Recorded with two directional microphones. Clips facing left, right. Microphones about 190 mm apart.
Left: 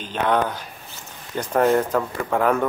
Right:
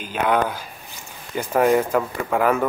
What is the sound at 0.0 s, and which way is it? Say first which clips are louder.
Speech: right 1 dB; 10° right (ahead or behind).